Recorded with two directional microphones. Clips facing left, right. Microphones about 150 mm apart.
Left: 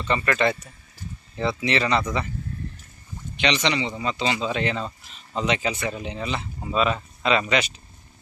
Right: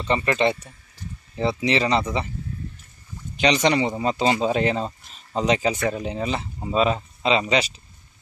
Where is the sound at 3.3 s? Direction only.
40° right (ahead or behind).